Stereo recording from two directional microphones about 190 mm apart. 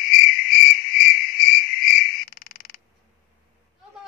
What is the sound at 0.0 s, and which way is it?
Cricket, 50° left (ahead or behind).